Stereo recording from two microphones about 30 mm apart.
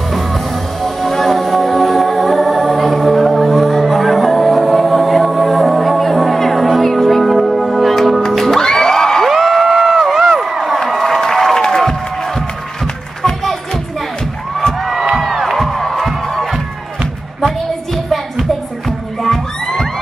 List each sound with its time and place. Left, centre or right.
0.8 s music: centre
8.5 s crowd: centre
9.3 s a sound: centre
10.3 s crowd: centre
10.9 s a sound: centre
11.1 s crowd: centre
13.2 s music: centre
14.8 s music: centre
15.5 s music: centre
16.1 s music: centre
18.9 s music: centre